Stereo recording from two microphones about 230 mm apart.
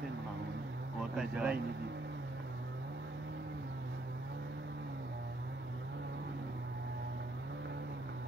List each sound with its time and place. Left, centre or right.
1.1 s speech: centre